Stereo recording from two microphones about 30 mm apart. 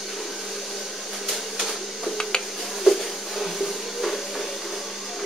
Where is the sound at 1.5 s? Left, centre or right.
Centre.